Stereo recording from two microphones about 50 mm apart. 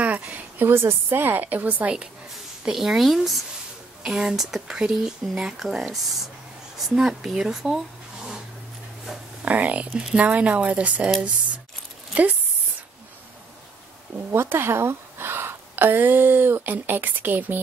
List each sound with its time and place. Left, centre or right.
0.0 s a sound: right
0.7 s a woman's voice: right
2.6 s speech: centre
9.4 s speech: right
12.1 s speech: right
14.3 s a woman's voice: right